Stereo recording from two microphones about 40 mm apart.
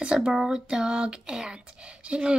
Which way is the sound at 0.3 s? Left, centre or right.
Centre.